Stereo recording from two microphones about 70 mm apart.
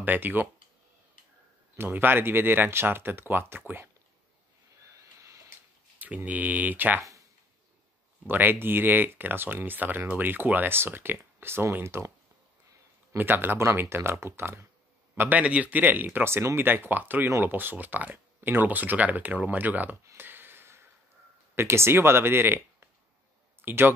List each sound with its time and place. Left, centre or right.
0.0 s speech: right
1.8 s speech: right
5.9 s speech: right
8.3 s speech: right
13.2 s speech: right
15.1 s speech: right
20.2 s a sound: right
21.5 s speech: right